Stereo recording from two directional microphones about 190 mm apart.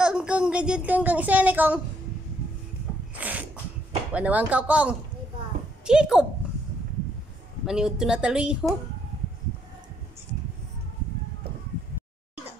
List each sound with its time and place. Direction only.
0.0 s speech: 5° right (ahead or behind)
3.2 s a sound: 10° right (ahead or behind)
4.1 s a woman's voice: 10° right (ahead or behind)
7.6 s a woman's voice: 5° right (ahead or behind)